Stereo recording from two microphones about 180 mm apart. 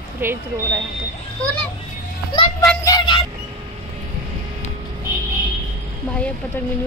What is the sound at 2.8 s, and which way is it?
Vehicle, 25° left (ahead or behind).